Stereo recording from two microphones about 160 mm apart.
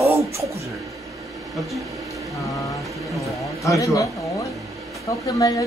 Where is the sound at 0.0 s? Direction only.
20° right (ahead or behind).